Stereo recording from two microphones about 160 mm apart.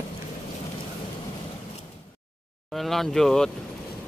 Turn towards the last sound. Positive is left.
turn(degrees=5)  # may be behind; listen again after turning